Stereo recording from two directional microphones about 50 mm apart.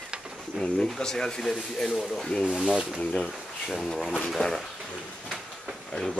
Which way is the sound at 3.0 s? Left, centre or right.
Centre.